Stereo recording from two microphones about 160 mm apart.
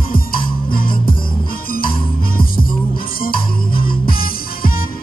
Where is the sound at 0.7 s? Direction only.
65° left (ahead or behind).